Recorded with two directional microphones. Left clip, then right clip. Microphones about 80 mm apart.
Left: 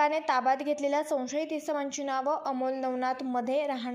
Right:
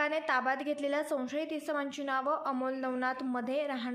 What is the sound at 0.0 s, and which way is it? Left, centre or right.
A woman's voice, left.